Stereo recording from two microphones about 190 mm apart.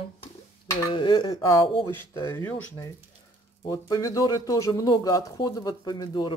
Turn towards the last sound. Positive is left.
turn(degrees=20)  # may be behind; listen again after turning